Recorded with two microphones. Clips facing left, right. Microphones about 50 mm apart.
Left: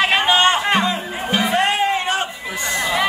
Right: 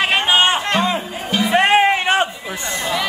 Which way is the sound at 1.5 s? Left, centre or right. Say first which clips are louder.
Right 7 dB; right.